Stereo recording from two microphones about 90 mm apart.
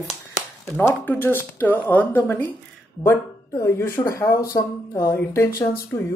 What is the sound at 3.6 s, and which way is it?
Speech, 25° left (ahead or behind).